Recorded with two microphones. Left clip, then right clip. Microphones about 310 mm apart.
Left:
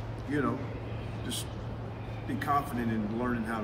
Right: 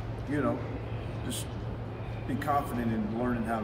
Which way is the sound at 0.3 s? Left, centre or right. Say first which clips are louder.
Right 1 dB; centre.